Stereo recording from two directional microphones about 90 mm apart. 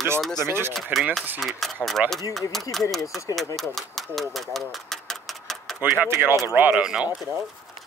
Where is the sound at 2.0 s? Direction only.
15° right (ahead or behind).